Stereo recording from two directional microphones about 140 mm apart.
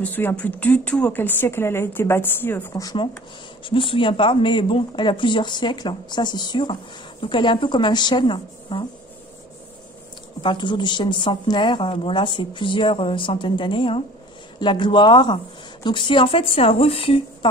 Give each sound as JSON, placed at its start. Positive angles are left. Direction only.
{"t": 0.0, "sound": "a woman's voice", "side_deg": 15}
{"t": 2.8, "sound": "speech", "side_deg": 30}
{"t": 10.4, "sound": "speech", "side_deg": 35}